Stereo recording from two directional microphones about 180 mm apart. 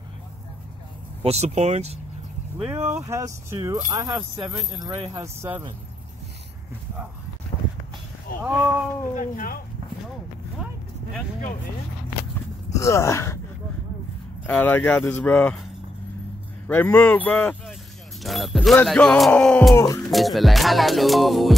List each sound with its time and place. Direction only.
1.2 s speech: 35° right (ahead or behind)
3.0 s speech: 15° right (ahead or behind)
4.9 s speech: 30° right (ahead or behind)
5.2 s speech: 15° right (ahead or behind)
8.3 s speech: 55° left (ahead or behind)
12.7 s speech: 15° left (ahead or behind)
14.4 s speech: 10° left (ahead or behind)
16.6 s speech: 10° left (ahead or behind)
18.2 s music: centre (ahead or behind)
19.7 s music: 20° left (ahead or behind)
20.0 s music: centre (ahead or behind)